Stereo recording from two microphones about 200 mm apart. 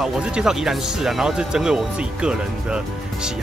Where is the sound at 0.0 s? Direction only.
Centre (ahead or behind).